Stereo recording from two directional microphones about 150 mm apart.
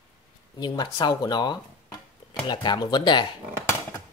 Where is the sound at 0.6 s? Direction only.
30° left (ahead or behind).